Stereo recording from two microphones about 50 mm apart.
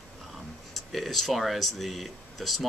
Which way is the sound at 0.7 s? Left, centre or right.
Centre.